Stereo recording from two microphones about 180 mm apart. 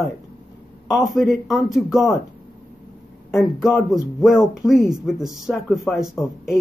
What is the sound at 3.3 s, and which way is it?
Speech, centre (ahead or behind).